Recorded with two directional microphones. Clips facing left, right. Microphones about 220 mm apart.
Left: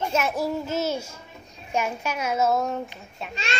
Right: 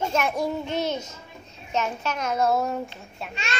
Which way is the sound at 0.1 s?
5° left (ahead or behind).